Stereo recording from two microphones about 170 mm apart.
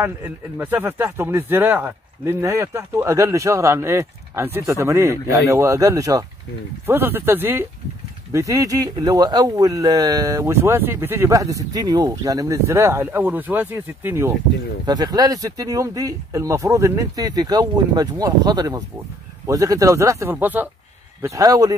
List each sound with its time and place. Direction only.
0.6 s speech: 15° right (ahead or behind)